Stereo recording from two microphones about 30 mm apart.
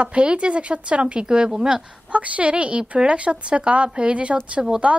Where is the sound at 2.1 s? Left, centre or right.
Right.